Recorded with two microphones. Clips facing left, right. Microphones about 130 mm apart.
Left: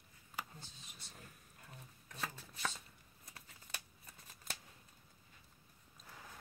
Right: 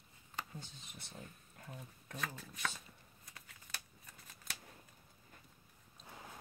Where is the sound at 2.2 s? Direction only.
25° left (ahead or behind).